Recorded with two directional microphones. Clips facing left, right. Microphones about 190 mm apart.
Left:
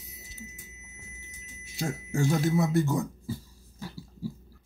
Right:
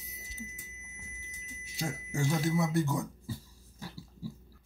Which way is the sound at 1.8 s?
45° left (ahead or behind).